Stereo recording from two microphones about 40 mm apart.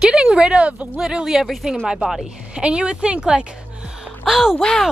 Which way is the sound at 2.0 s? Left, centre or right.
Right.